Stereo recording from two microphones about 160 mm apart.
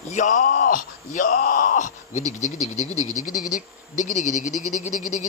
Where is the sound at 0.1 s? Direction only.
55° left (ahead or behind).